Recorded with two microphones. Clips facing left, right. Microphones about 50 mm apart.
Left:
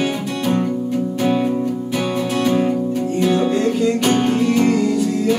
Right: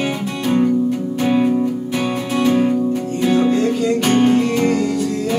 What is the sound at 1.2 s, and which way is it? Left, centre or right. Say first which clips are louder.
Music: right 3 dB; centre.